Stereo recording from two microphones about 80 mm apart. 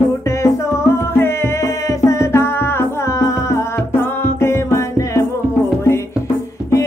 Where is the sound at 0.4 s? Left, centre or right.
Left.